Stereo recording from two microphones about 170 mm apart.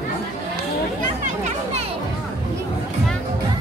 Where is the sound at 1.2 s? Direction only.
45° right (ahead or behind).